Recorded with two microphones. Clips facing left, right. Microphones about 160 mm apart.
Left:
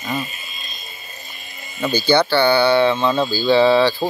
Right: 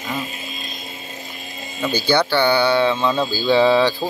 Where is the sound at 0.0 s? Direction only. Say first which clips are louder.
Left 1 dB; 90° right.